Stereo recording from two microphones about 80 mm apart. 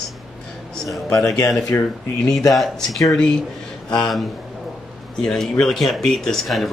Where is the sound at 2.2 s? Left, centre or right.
Centre.